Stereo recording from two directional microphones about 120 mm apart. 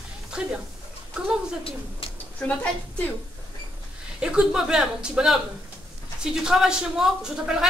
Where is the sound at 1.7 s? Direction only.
50° left (ahead or behind).